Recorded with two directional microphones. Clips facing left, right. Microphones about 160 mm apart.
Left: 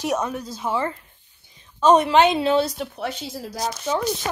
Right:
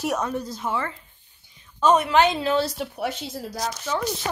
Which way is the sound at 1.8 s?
30° left (ahead or behind).